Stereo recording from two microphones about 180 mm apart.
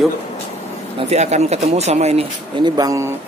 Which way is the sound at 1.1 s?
35° right (ahead or behind).